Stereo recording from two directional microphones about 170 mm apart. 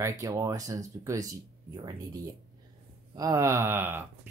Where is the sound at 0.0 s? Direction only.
20° right (ahead or behind).